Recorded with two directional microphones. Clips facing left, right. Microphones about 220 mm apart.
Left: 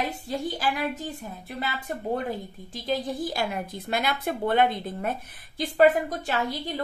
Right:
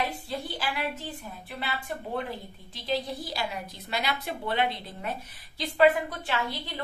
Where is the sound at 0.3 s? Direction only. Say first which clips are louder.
Left 5 dB; 45° left (ahead or behind).